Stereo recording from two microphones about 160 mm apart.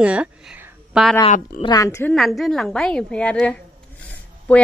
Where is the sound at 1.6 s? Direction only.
25° left (ahead or behind).